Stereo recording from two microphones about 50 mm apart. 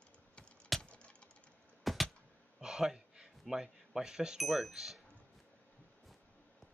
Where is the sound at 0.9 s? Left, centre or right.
Left.